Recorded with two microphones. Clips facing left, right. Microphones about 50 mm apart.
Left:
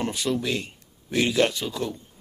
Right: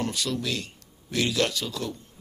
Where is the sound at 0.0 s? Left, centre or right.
Left.